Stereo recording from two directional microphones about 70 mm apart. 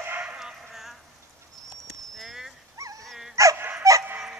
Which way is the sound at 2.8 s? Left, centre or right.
Right.